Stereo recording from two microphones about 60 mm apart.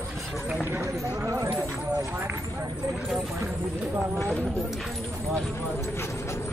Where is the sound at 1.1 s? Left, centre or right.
Right.